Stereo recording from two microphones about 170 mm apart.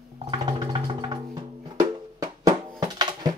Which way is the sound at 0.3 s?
30° right (ahead or behind).